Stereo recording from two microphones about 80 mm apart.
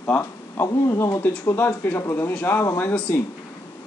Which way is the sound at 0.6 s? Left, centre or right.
Left.